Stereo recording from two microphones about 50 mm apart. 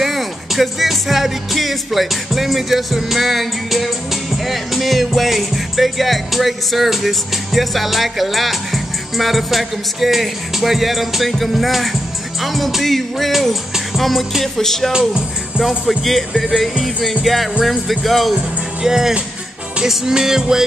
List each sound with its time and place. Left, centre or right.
0.0 s music: centre
14.9 s music: centre
15.8 s music: centre
18.3 s speech: centre
19.8 s music: centre